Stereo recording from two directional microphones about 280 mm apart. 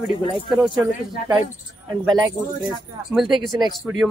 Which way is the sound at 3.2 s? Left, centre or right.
Centre.